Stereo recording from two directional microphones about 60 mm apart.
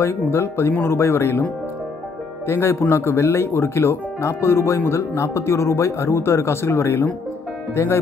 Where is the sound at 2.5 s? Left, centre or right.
Left.